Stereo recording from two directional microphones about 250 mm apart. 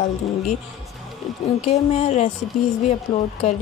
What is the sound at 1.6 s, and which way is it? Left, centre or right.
Speech, left.